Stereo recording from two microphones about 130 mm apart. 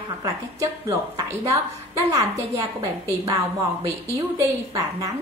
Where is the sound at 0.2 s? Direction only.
25° right (ahead or behind).